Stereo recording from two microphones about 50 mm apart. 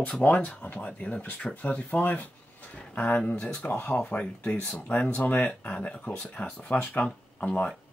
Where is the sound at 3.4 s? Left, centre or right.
Centre.